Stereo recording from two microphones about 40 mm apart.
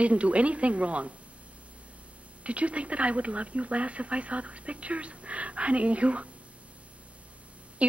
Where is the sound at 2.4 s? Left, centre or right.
Right.